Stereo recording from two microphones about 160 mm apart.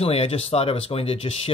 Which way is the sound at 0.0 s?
40° left (ahead or behind).